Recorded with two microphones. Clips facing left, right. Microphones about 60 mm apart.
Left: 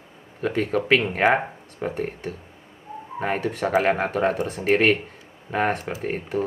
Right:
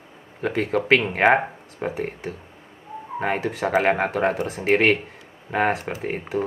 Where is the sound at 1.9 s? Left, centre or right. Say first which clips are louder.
Even; centre.